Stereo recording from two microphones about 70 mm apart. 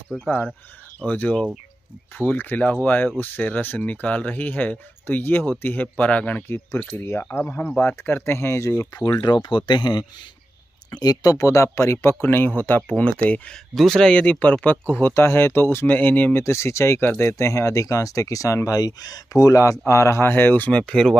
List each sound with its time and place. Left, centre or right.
0.1 s speech: centre
0.9 s speech: left
8.0 s speech: left
9.0 s speech: left
11.0 s speech: left; by 14.1 s centre
14.1 s speech: centre
16.3 s speech: left; by 21.2 s centre